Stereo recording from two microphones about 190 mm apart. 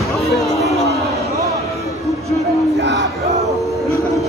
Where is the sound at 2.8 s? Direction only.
65° right (ahead or behind).